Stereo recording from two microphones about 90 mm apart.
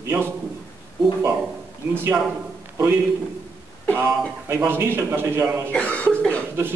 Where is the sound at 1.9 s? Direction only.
25° right (ahead or behind).